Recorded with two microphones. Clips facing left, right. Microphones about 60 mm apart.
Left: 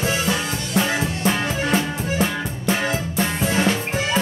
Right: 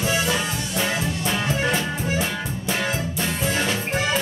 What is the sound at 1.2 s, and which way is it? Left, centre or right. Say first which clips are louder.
Music: left 1 dB; left.